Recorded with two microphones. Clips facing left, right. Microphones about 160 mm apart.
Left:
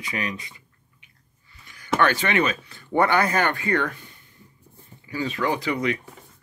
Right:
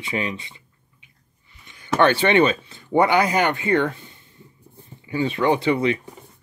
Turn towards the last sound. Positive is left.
turn(degrees=-25)  # may be behind; listen again after turning